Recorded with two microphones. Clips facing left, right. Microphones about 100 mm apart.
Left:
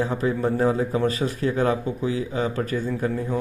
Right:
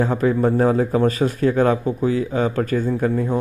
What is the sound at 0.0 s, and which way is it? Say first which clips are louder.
A man's voice: right 5 dB; 40° right (ahead or behind).